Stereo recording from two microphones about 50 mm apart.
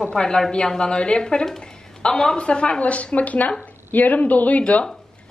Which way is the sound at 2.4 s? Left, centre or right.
Left.